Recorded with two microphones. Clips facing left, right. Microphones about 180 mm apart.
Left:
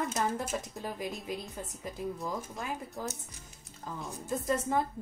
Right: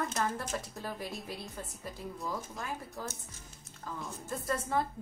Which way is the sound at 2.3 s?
20° left (ahead or behind).